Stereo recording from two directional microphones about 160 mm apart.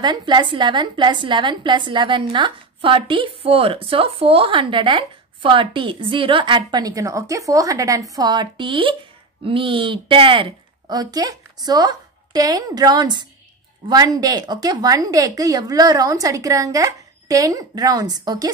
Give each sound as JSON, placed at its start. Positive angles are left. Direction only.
{"t": 0.0, "sound": "a woman's voice", "side_deg": -30}